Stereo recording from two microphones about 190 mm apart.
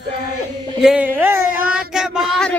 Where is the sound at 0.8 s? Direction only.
5° right (ahead or behind).